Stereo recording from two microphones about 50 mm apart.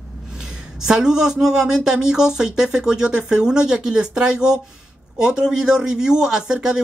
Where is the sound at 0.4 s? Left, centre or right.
Centre.